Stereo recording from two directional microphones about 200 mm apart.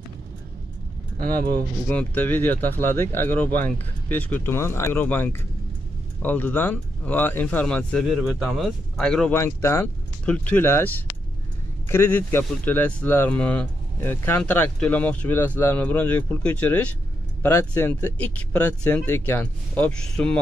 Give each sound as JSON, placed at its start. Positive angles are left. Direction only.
{"t": 1.1, "sound": "speech", "side_deg": -45}
{"t": 1.9, "sound": "speech", "side_deg": 10}
{"t": 11.9, "sound": "speech", "side_deg": 10}